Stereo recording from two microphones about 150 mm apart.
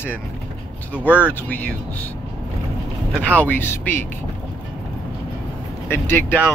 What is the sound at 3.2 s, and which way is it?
Speech, 10° left (ahead or behind).